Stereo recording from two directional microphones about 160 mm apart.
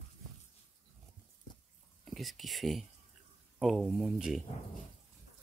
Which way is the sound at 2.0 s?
Centre (ahead or behind).